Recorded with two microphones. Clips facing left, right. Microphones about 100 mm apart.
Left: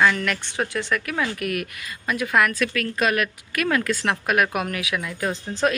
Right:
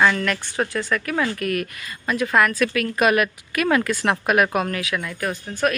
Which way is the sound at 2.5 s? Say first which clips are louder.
Right 3 dB; 10° right (ahead or behind).